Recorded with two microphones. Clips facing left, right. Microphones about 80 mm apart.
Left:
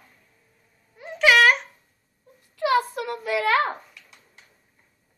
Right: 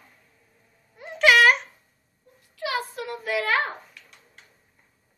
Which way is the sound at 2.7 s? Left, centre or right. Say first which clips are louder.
Left 7 dB; left.